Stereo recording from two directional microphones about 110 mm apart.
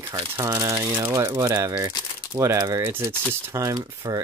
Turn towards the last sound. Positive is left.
turn(degrees=-30)  # may be behind; listen again after turning